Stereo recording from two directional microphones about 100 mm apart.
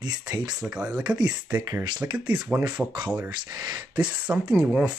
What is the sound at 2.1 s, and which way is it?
Speech, 15° right (ahead or behind).